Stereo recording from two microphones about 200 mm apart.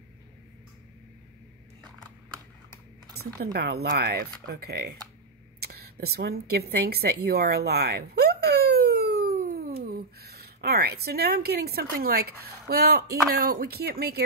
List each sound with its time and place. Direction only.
3.5 s speech: 55° right (ahead or behind)
5.6 s a sound: 50° right (ahead or behind)
13.3 s speech: 50° right (ahead or behind)